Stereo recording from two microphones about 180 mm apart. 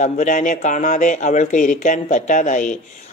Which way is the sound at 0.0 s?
45° left (ahead or behind).